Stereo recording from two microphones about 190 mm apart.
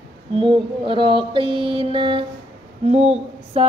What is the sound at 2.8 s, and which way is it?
Speech, 35° right (ahead or behind).